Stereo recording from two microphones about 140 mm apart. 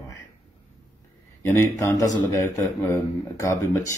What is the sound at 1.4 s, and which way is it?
Speech, 20° left (ahead or behind).